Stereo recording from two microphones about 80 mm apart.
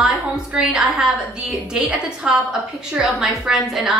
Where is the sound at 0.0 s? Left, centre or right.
Centre.